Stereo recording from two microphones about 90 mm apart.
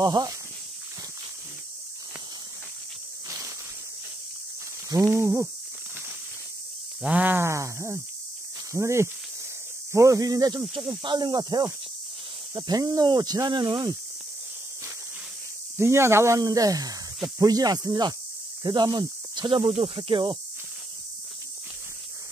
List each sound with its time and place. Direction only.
0.0 s speech: 55° right (ahead or behind)
3.3 s insect: 40° right (ahead or behind)
4.8 s a sound: 35° right (ahead or behind)
7.0 s a sound: 15° right (ahead or behind)
7.3 s speech: 30° right (ahead or behind)
11.0 s speech: 55° right (ahead or behind)
15.8 s speech: 30° right (ahead or behind); by 19.5 s 50° right (ahead or behind)
19.5 s speech: 70° right (ahead or behind)